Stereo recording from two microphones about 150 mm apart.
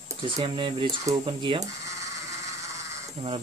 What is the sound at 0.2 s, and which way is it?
Speech, 35° right (ahead or behind).